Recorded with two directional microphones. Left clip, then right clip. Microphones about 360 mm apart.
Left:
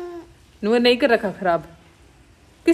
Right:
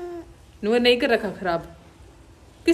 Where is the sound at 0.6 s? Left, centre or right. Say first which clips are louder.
Left 2 dB; centre.